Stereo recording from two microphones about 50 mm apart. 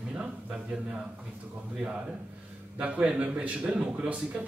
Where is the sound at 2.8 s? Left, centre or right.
Centre.